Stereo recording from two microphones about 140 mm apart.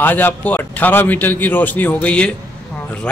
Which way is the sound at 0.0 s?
15° left (ahead or behind).